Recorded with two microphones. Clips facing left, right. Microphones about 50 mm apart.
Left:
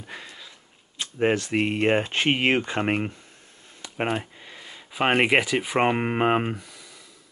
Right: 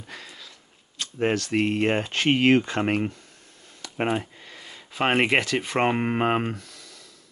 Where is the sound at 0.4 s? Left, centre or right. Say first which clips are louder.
Left 1 dB; centre.